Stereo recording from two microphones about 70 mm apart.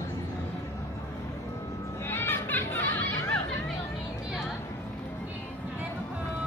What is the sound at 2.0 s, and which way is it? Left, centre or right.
Music, left.